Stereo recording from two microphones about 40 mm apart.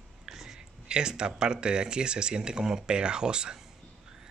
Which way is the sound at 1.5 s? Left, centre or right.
Right.